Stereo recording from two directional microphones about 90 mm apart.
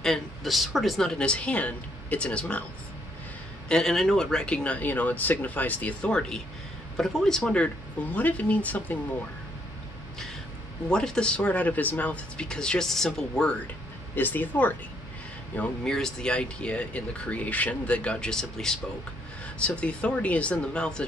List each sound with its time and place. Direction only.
0.0 s speech: 5° left (ahead or behind)
3.6 s speech: 5° left (ahead or behind)
10.9 s speech: 10° left (ahead or behind)
14.1 s speech: 20° left (ahead or behind)